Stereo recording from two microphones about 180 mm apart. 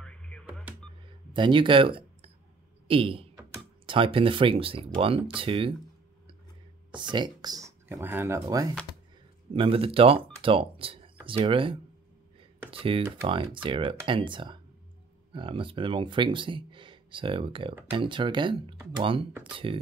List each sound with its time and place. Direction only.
0.0 s music: 5° left (ahead or behind)
1.3 s speech: 25° right (ahead or behind)
6.9 s speech: 25° right (ahead or behind)
9.5 s speech: 30° right (ahead or behind)
12.4 s a sound: 30° right (ahead or behind)
13.3 s speech: 30° right (ahead or behind)